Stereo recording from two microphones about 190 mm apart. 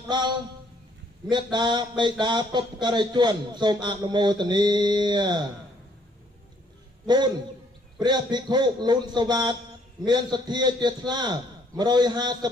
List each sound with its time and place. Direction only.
1.3 s speech: 25° right (ahead or behind)
7.1 s speech: 25° right (ahead or behind)